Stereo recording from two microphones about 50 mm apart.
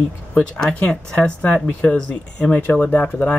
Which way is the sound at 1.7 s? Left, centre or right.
Left.